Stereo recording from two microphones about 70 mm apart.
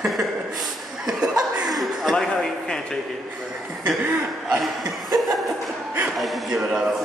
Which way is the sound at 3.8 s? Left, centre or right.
Right.